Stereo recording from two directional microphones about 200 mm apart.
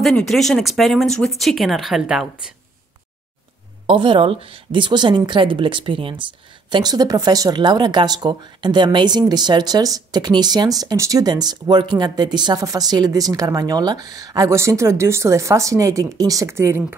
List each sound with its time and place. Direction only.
0.0 s speech: centre (ahead or behind)
3.8 s speech: 25° right (ahead or behind)